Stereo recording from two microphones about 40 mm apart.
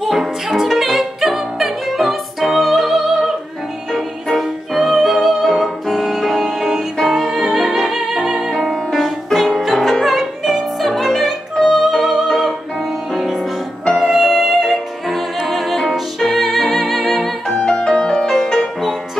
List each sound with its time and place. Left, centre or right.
0.0 s music: centre
4.4 s music: centre
8.5 s music: centre
10.1 s music: centre
14.0 s music: centre
17.5 s music: centre